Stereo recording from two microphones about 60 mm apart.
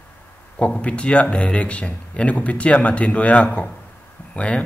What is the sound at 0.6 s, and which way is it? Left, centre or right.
Speech, centre.